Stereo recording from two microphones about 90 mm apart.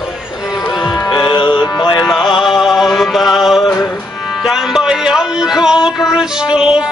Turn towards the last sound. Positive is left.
turn(degrees=-10)  # may be behind; listen again after turning